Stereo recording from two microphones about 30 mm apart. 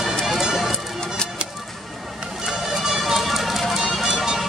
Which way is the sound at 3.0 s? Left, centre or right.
Centre.